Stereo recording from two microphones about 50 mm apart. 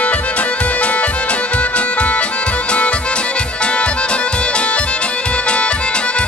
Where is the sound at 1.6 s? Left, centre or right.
Left.